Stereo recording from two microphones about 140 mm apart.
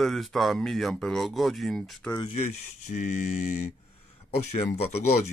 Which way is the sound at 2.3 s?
55° left (ahead or behind).